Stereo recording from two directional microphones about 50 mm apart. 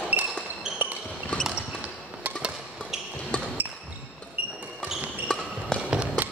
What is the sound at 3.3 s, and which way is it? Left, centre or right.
Basketball bounce, centre.